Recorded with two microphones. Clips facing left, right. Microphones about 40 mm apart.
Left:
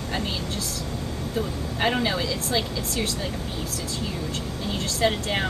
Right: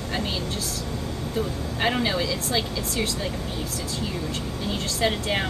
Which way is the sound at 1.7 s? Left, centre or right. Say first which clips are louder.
Even; centre.